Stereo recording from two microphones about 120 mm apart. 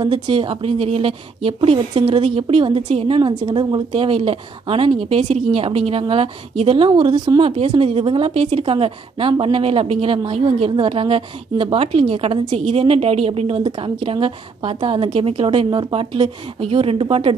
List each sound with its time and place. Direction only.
0.0 s a woman's voice: 45° right (ahead or behind)
2.9 s a woman's voice: 60° right (ahead or behind)
3.2 s a woman's voice: 40° right (ahead or behind)